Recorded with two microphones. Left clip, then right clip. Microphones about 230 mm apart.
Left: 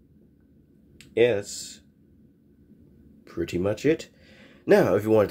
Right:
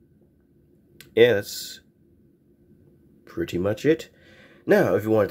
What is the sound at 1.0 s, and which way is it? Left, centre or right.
Speech, centre.